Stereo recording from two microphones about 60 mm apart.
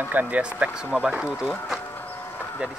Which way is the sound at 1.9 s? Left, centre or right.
Left.